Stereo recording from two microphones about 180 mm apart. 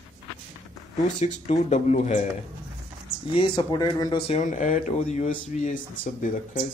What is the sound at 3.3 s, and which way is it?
Speech, 25° left (ahead or behind).